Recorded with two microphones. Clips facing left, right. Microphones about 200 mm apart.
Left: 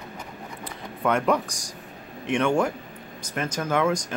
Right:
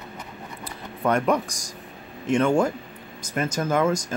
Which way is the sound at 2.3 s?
5° right (ahead or behind).